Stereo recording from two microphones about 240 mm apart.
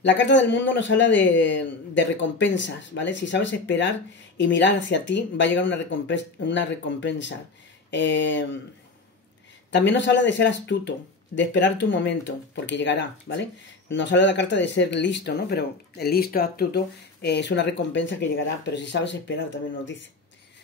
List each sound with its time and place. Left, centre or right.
0.0 s speech: left
9.7 s speech: left